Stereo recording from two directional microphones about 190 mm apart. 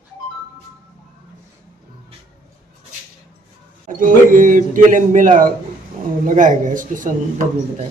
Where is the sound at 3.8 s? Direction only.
45° right (ahead or behind).